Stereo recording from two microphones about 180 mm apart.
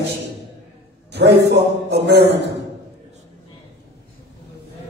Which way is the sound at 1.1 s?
70° right (ahead or behind).